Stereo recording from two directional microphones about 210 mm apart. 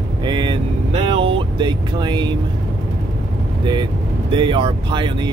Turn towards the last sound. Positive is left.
turn(degrees=-20)  # may be behind; listen again after turning